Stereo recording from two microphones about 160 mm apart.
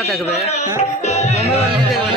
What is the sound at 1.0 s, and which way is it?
Music, 40° left (ahead or behind).